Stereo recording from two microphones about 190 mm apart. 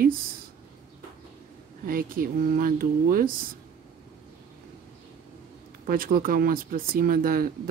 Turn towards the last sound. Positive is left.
turn(degrees=-50)  # may be behind; listen again after turning